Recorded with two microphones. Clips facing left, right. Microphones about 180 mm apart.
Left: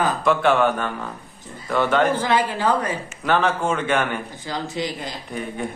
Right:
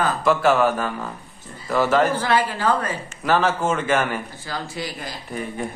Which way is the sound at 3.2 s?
5° right (ahead or behind).